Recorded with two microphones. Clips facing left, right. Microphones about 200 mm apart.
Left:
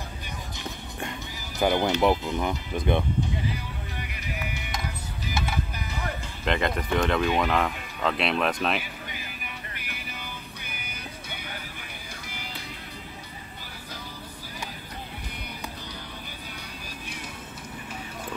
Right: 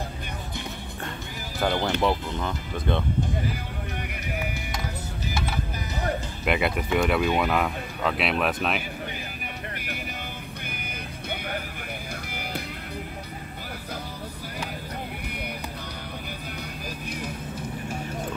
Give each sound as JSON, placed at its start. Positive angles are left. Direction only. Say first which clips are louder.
{"t": 1.6, "sound": "speech", "louder": "left 2 dB", "side_deg": 15}
{"t": 6.4, "sound": "speech", "louder": "right 1 dB", "side_deg": -10}
{"t": 11.2, "sound": "music", "louder": "right 7 dB", "side_deg": -55}